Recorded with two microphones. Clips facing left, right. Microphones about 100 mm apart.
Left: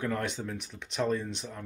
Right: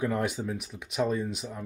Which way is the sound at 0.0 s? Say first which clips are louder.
Right 3 dB; 10° right (ahead or behind).